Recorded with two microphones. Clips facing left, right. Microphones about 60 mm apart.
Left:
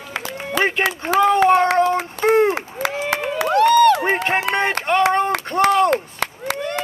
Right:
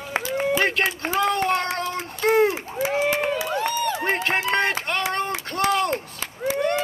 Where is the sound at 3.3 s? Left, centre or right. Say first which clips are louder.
Left 10 dB; left.